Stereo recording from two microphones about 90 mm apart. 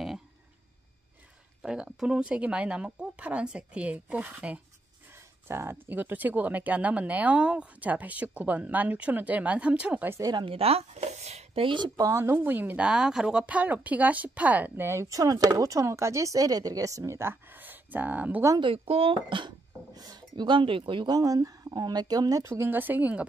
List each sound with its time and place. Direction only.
1.6 s speech: 10° right (ahead or behind)
5.1 s speech: 30° right (ahead or behind)
10.4 s speech: 90° right
11.5 s speech: 70° right (ahead or behind)
12.0 s speech: 30° right (ahead or behind)
14.9 s speech: 35° right (ahead or behind); by 18.4 s 20° right (ahead or behind)
18.6 s speech: 85° right; by 19.5 s 65° right (ahead or behind)
19.9 s speech: 45° right (ahead or behind); by 21.1 s 70° right (ahead or behind)
21.1 s speech: 40° right (ahead or behind)
22.4 s speech: 30° right (ahead or behind)